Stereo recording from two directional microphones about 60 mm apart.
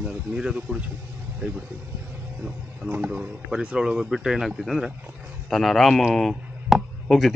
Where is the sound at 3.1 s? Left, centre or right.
Centre.